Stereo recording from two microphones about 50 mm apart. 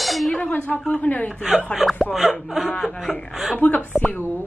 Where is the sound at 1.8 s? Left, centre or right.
Centre.